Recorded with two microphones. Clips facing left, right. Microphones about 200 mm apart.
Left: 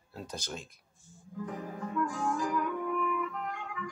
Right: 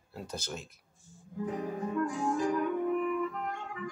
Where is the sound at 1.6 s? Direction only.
20° right (ahead or behind).